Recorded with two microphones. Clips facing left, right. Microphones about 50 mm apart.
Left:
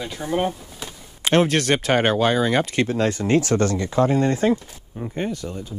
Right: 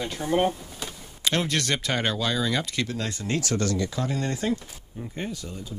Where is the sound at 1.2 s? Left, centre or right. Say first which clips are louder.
Left 7 dB; left.